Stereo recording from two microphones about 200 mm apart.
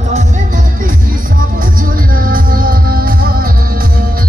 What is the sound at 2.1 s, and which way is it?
Music, 45° right (ahead or behind).